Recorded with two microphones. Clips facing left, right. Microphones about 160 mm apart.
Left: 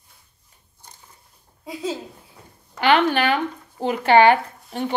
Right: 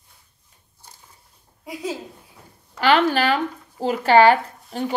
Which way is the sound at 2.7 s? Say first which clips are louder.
Even; 35° right (ahead or behind).